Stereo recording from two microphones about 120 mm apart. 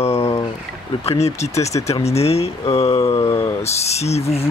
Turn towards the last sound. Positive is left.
turn(degrees=60)  # may be behind; listen again after turning